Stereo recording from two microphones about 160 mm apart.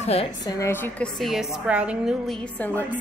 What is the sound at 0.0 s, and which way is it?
Speech, 40° left (ahead or behind).